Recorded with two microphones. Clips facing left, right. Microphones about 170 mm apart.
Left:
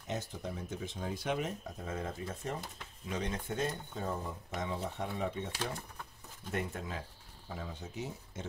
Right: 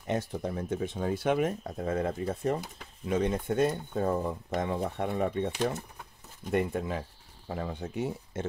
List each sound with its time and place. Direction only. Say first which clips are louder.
0.0 s speech: right 8 dB; 60° right (ahead or behind)
5.5 s speech: right 9 dB; 20° right (ahead or behind)
6.5 s speech: right 9 dB; 55° right (ahead or behind)